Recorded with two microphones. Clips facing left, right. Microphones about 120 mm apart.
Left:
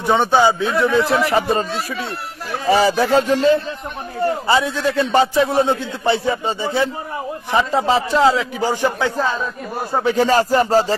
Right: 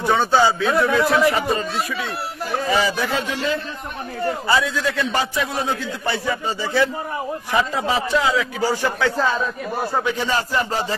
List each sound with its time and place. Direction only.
0.0 s a man's voice: 20° left (ahead or behind)
1.1 s music: 30° left (ahead or behind)
2.7 s music: 35° left (ahead or behind)
4.5 s a man's voice: 25° left (ahead or behind)
10.0 s music: 40° left (ahead or behind)